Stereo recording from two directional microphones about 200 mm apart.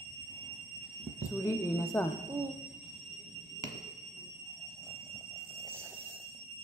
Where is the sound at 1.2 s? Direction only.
15° left (ahead or behind).